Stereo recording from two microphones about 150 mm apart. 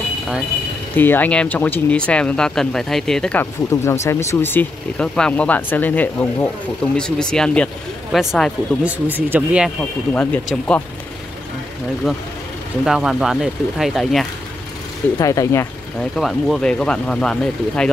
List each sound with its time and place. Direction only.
0.9 s speech: 15° left (ahead or behind)
3.7 s speech: 20° left (ahead or behind); by 9.7 s 10° right (ahead or behind)
9.8 s speech: 5° left (ahead or behind)
12.8 s speech: centre (ahead or behind)
15.1 s speech: 20° left (ahead or behind)
16.0 s speech: centre (ahead or behind)